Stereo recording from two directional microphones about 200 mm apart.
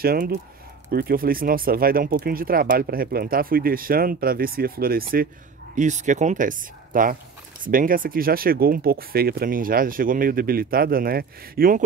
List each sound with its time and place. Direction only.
0.0 s speech: 50° right (ahead or behind)
5.8 s speech: 35° right (ahead or behind)